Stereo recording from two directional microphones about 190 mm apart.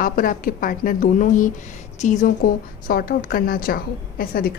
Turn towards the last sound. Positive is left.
turn(degrees=50)  # may be behind; listen again after turning